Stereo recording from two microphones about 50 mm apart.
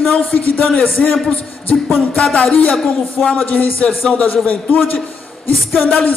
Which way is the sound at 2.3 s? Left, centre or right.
Left.